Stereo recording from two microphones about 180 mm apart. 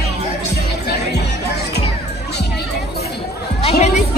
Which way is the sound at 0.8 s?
65° left (ahead or behind).